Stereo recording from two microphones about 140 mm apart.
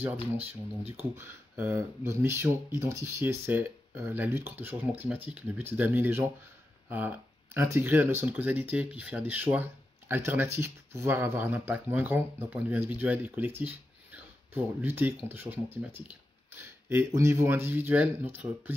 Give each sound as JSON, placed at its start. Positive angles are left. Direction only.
{"t": 0.4, "sound": "speech", "side_deg": -45}
{"t": 1.1, "sound": "speech", "side_deg": -15}